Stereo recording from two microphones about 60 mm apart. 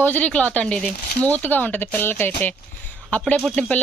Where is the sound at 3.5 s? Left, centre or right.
Left.